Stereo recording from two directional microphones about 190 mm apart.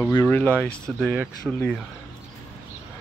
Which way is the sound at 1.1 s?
10° right (ahead or behind).